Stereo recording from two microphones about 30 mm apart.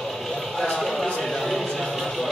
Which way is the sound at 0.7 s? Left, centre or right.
Centre.